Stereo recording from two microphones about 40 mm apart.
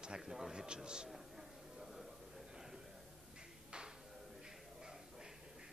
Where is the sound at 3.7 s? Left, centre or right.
Right.